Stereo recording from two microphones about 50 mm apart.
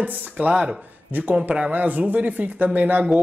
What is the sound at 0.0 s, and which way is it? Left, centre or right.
Speech, right.